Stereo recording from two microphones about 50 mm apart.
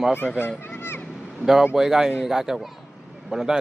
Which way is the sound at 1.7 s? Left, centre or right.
Centre.